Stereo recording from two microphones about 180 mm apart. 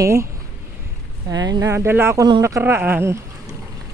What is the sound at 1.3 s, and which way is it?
Speech, 20° right (ahead or behind).